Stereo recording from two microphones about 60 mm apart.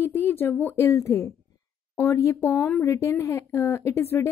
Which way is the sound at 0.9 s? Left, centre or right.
Left.